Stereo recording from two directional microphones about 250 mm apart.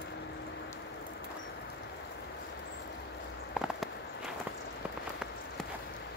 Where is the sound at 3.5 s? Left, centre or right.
Centre.